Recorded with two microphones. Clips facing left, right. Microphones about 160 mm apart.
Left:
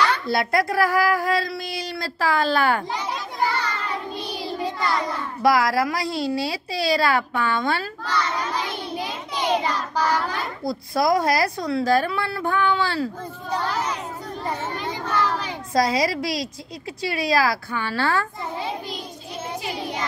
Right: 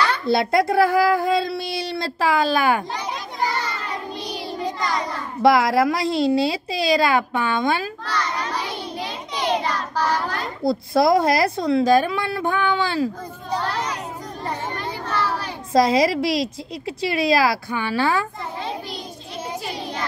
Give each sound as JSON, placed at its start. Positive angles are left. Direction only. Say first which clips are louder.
{"t": 0.3, "sound": "a child's voice", "louder": "right 4 dB", "side_deg": -25}
{"t": 3.4, "sound": "child singing", "louder": "even", "side_deg": -15}
{"t": 4.8, "sound": "a child's voice", "louder": "left 1 dB", "side_deg": -20}
{"t": 9.0, "sound": "child singing", "louder": "right 1 dB", "side_deg": 10}
{"t": 10.6, "sound": "a child's voice", "louder": "right 5 dB", "side_deg": -25}
{"t": 14.8, "sound": "children playing", "louder": "left 1 dB", "side_deg": 10}
{"t": 15.7, "sound": "a child's voice", "louder": "right 4 dB", "side_deg": -25}